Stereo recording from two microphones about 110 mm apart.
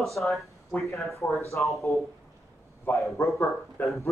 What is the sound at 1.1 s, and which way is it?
Speech, 25° left (ahead or behind).